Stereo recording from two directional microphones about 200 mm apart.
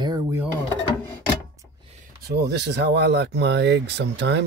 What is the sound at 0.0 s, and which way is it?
Drawer open or close, 20° right (ahead or behind).